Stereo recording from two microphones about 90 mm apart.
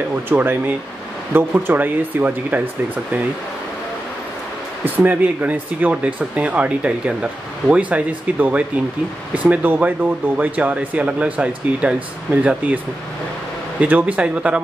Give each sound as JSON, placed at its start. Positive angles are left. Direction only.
{"t": 0.1, "sound": "speech", "side_deg": -20}
{"t": 4.8, "sound": "speech", "side_deg": -20}